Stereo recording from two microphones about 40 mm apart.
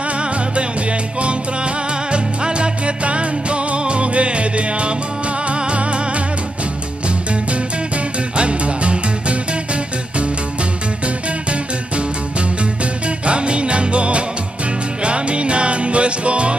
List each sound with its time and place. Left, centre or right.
1.2 s music: right
8.4 s music: right
13.2 s music: right